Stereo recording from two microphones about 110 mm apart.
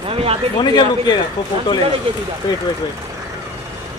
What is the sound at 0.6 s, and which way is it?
Speech, 40° left (ahead or behind).